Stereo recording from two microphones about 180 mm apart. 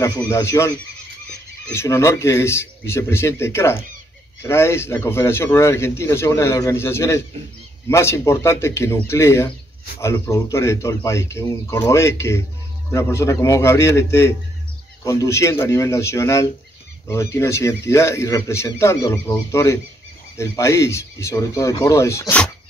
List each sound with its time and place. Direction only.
0.0 s a man's voice: 15° left (ahead or behind)